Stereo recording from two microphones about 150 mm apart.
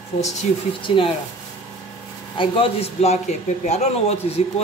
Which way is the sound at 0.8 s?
35° left (ahead or behind).